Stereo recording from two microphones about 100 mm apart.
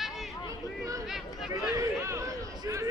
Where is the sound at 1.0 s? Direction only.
5° right (ahead or behind).